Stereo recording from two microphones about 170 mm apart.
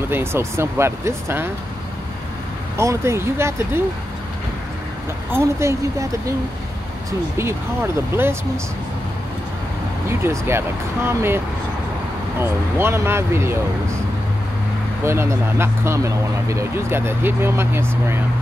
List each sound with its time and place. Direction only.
0.1 s speech: 15° right (ahead or behind)
2.8 s speech: 15° right (ahead or behind)
5.3 s speech: 15° right (ahead or behind)
10.0 s speech: 15° right (ahead or behind)
15.0 s speech: 15° right (ahead or behind)